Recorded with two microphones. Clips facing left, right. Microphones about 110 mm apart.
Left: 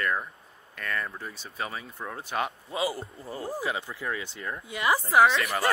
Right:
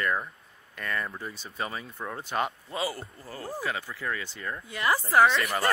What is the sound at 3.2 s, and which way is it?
Speech, 25° left (ahead or behind).